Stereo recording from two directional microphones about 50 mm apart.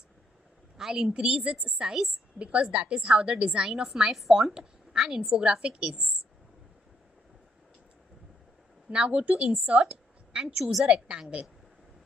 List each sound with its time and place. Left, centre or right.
0.7 s a woman's voice: centre
8.9 s a woman's voice: right
9.7 s a sound: right
10.6 s a woman's voice: centre
11.1 s a woman's voice: right